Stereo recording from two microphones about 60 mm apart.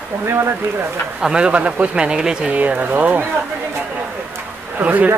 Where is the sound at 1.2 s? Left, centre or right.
Centre.